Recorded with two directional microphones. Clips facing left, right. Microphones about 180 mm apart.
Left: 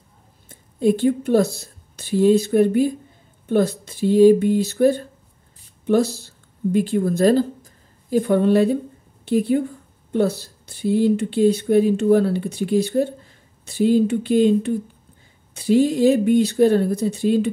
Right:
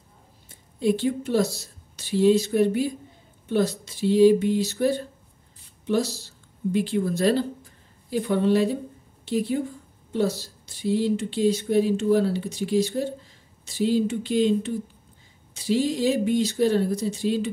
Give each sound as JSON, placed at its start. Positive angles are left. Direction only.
{"t": 0.5, "sound": "a woman's voice", "side_deg": 50}